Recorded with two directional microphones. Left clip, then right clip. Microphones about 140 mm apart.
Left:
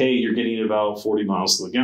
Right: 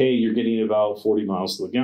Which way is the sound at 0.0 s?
40° right (ahead or behind).